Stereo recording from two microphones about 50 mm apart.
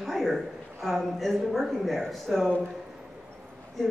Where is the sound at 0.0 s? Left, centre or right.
Centre.